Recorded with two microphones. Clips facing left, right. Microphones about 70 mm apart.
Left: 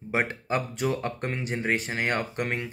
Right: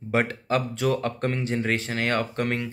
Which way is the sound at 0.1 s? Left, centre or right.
Centre.